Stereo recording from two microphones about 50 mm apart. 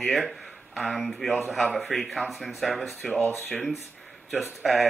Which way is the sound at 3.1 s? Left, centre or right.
Left.